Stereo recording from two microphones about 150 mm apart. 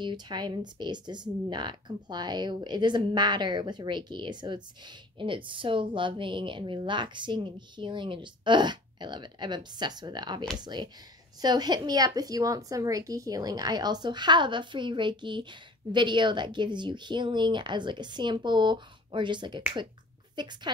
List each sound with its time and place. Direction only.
0.0 s speech: 30° right (ahead or behind)